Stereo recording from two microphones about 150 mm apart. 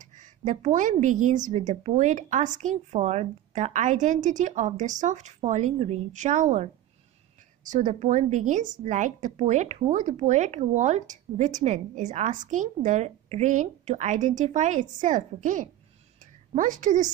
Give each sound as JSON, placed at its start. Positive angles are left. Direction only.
{"t": 0.0, "sound": "a woman's voice", "side_deg": -55}